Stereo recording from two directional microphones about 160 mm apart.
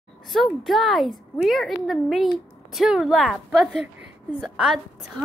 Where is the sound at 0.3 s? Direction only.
Centre (ahead or behind).